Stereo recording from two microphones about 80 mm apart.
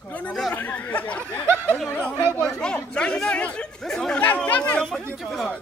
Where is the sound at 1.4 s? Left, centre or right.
Right.